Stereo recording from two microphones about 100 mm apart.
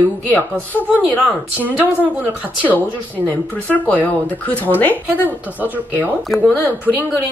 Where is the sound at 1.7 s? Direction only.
15° right (ahead or behind).